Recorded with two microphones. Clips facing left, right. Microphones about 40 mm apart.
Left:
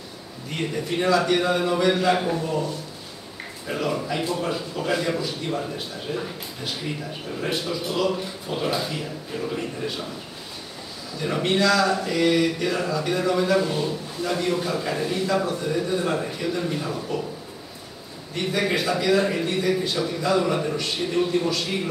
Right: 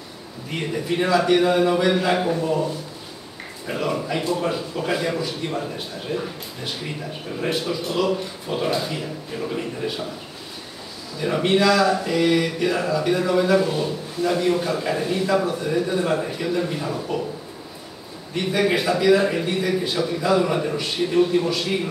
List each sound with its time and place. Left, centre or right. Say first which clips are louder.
0.5 s a man's voice: right 2 dB; centre
11.1 s speech: right 3 dB; centre
18.3 s a man's voice: right 3 dB; centre